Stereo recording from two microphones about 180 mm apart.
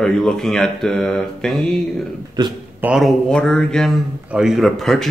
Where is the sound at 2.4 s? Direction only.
25° right (ahead or behind).